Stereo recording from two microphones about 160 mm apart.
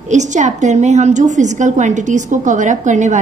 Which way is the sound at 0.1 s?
50° right (ahead or behind).